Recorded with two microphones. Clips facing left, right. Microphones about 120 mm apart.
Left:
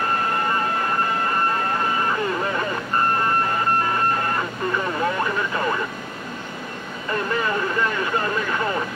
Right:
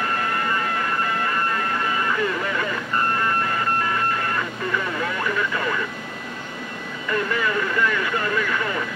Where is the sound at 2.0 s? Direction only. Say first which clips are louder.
Left 1 dB; 30° left (ahead or behind).